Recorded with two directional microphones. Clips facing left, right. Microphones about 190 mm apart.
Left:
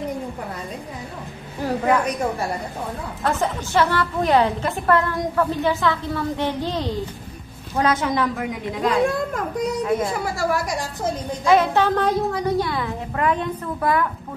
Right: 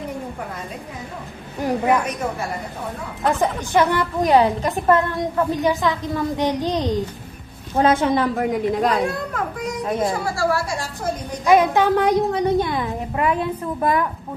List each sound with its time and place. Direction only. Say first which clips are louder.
1.6 s a sound: right 2 dB; 15° right (ahead or behind)
3.3 s a child's voice: right 3 dB; 15° right (ahead or behind)
7.7 s a woman's voice: right 4 dB; 30° right (ahead or behind)
8.5 s a woman's voice: right 4 dB; 45° right (ahead or behind)
10.2 s speech: right 1 dB; 15° left (ahead or behind)
11.4 s a child's voice: right 2 dB; 15° right (ahead or behind)
13.7 s a woman's voice: right 1 dB; 20° right (ahead or behind)